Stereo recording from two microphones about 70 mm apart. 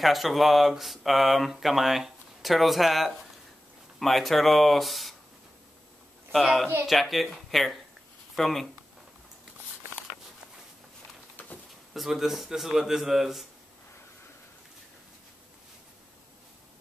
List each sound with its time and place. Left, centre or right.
0.0 s speech: centre
6.3 s speech: centre
11.4 s a sound: left
11.9 s speech: centre